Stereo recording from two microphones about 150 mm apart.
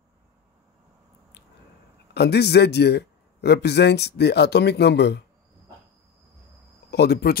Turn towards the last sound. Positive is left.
turn(degrees=90)